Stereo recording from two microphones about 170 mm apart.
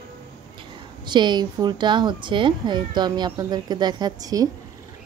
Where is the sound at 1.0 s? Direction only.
25° right (ahead or behind).